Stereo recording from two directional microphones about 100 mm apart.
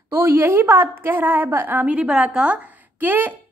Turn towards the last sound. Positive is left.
turn(degrees=-20)  # may be behind; listen again after turning